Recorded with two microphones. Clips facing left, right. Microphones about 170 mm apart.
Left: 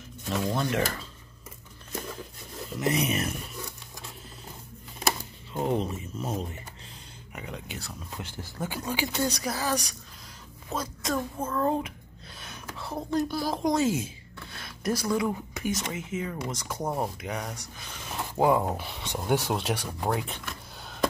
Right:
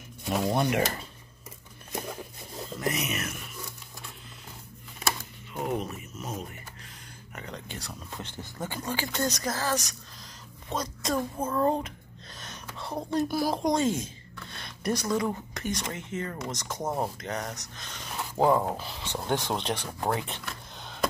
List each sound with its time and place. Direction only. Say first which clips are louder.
0.6 s speech: right 2 dB; 15° right (ahead or behind)
2.8 s speech: left 5 dB; 30° left (ahead or behind)
5.5 s speech: left 3 dB; 30° left (ahead or behind)
7.3 s a woman's voice: left 1 dB; 10° left (ahead or behind)
11.3 s speech: right 1 dB; 15° right (ahead or behind)
11.6 s speech: right 1 dB; centre (ahead or behind)
12.4 s a sound: left 1 dB; 5° left (ahead or behind)
13.3 s speech: right 2 dB; 10° right (ahead or behind)
13.6 s speech: left 1 dB; 5° left (ahead or behind)
16.8 s speech: even; 10° right (ahead or behind)
17.2 s speech: even; 10° left (ahead or behind)
20.8 s a sound: left 2 dB; centre (ahead or behind)